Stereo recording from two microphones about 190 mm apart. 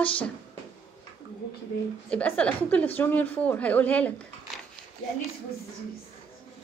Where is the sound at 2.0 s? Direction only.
5° left (ahead or behind).